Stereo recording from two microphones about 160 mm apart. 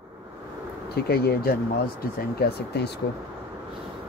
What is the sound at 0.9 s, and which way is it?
Speech, 80° left.